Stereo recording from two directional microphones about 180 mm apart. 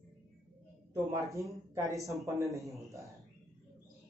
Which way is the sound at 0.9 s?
15° right (ahead or behind).